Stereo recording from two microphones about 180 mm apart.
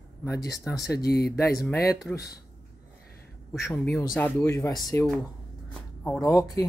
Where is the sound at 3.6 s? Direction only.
15° left (ahead or behind).